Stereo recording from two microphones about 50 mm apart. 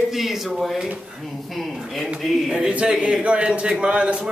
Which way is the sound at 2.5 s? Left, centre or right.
Right.